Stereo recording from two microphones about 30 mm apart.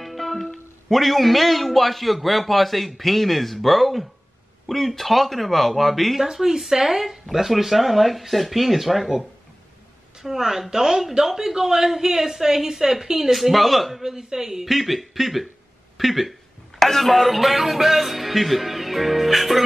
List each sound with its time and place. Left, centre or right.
0.0 s music: centre
0.8 s a man's voice: centre
6.3 s a man's voice: centre
10.1 s a woman's voice: centre
14.0 s a woman's voice: centre
16.0 s a sound: centre
16.8 s a man's voice: centre